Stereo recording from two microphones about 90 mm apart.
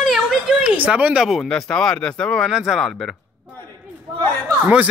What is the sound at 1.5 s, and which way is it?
Speech, 5° left (ahead or behind).